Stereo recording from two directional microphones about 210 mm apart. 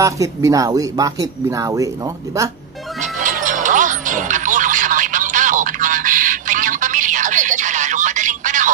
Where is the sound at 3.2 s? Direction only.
40° right (ahead or behind).